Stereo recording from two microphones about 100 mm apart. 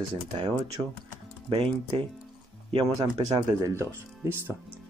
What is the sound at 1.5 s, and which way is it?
Speech, 65° right (ahead or behind).